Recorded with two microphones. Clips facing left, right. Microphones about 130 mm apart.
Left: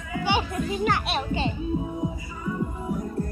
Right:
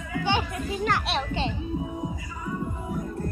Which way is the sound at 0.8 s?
Centre (ahead or behind).